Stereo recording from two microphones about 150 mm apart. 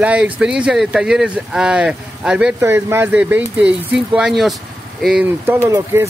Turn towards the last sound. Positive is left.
turn(degrees=-20)  # may be behind; listen again after turning